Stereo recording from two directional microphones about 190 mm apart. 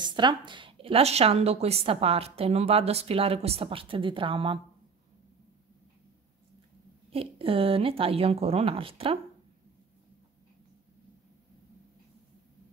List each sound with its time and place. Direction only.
0.0 s a woman's voice: 25° right (ahead or behind)
7.1 s speech: 30° right (ahead or behind)